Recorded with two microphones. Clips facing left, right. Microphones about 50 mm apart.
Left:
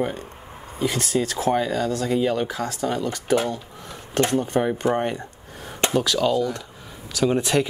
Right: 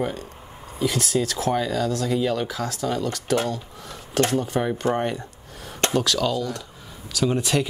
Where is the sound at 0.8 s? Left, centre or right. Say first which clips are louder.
Even; left.